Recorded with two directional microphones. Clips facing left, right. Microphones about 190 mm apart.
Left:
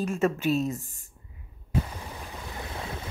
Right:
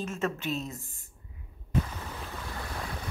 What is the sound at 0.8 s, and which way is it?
Speech, 40° left (ahead or behind).